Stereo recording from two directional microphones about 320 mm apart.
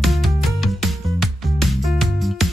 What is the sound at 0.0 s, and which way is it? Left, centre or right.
Music, centre.